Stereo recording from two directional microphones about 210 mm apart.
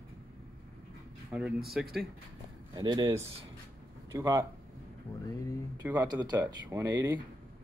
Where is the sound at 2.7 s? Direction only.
20° right (ahead or behind).